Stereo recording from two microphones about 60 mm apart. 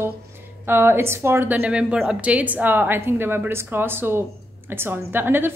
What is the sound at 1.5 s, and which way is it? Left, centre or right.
A woman's voice, right.